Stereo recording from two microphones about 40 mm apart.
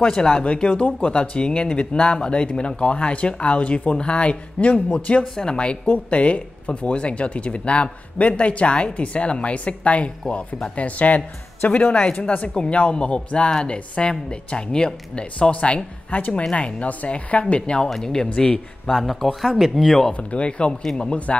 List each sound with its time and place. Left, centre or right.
0.0 s speech: centre; by 1.1 s left
1.3 s speech: left
5.2 s speech: centre
15.5 s speech: left
17.6 s speech: left
17.8 s speech: centre
19.4 s speech: centre
20.2 s speech: left
20.8 s speech: centre